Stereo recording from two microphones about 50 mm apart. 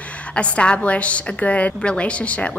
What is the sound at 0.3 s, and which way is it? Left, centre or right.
A woman's voice, left.